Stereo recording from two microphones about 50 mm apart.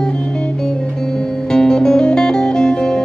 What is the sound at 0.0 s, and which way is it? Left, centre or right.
Music, centre.